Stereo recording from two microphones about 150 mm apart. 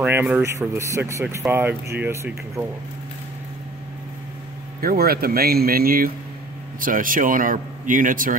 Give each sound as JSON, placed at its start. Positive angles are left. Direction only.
{"t": 0.0, "sound": "speech", "side_deg": -10}
{"t": 4.7, "sound": "speech", "side_deg": -85}
{"t": 6.8, "sound": "a man's voice", "side_deg": -65}